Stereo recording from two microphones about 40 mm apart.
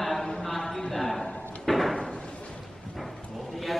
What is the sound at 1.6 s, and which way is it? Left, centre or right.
Slam, centre.